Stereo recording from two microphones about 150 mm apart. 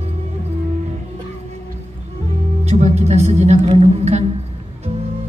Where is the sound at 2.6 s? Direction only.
45° right (ahead or behind).